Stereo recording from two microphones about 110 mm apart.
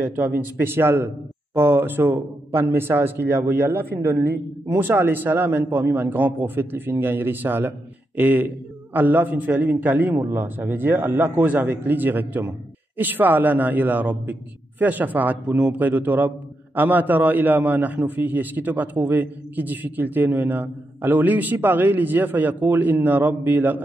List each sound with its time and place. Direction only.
0.0 s a man's voice: 20° right (ahead or behind)